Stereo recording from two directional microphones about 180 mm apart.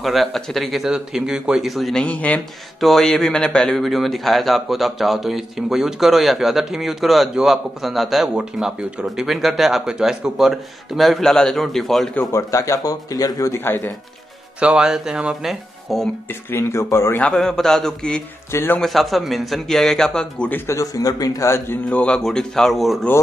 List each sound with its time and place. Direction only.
0.0 s speech: centre (ahead or behind)
12.3 s speech: 15° left (ahead or behind)
14.6 s speech: 5° right (ahead or behind)
16.3 s speech: 10° left (ahead or behind)
17.3 s speech: 5° left (ahead or behind)
18.8 s speech: centre (ahead or behind)